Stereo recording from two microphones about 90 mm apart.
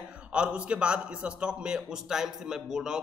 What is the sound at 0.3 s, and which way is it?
A man's voice, 10° right (ahead or behind).